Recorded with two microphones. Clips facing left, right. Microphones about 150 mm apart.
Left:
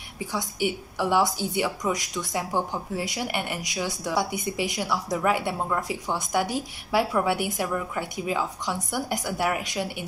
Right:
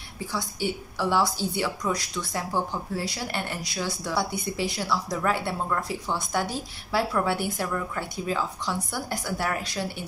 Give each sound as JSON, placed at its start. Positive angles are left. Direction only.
{"t": 0.3, "sound": "a woman's voice", "side_deg": 15}